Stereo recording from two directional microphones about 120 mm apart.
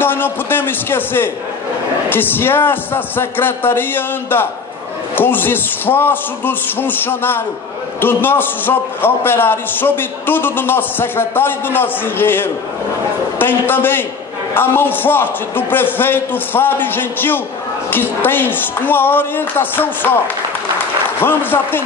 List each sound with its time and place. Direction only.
0.0 s a man's voice: 15° left (ahead or behind)
21.2 s a man's voice: 15° left (ahead or behind)